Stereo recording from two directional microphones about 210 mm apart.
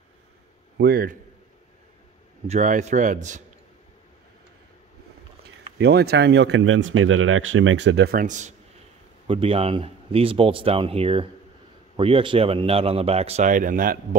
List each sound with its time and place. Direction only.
0.7 s a man's voice: 50° right (ahead or behind)
2.4 s a man's voice: 35° right (ahead or behind)
5.8 s speech: 50° right (ahead or behind)